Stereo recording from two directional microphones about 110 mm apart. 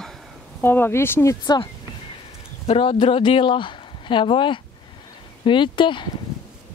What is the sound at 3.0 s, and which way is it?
Speech, 45° left (ahead or behind).